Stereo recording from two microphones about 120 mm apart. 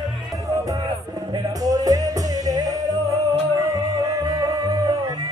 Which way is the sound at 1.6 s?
30° right (ahead or behind).